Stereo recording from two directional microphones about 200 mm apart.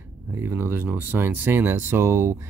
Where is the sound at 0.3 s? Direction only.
10° right (ahead or behind).